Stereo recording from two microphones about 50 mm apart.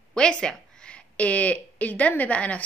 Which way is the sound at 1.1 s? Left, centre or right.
Left.